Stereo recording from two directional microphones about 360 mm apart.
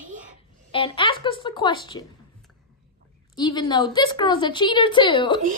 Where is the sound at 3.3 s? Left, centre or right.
Centre.